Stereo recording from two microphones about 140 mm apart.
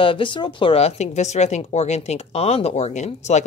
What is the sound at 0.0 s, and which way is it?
Speech, 35° left (ahead or behind).